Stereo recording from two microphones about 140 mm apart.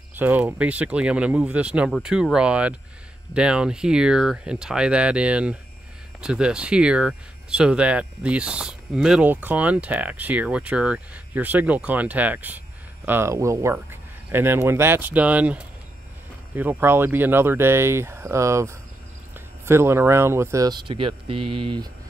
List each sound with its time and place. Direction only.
0.1 s speech: 15° right (ahead or behind); by 21.8 s 35° right (ahead or behind)